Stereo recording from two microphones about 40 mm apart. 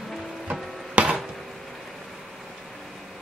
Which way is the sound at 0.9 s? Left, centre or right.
Right.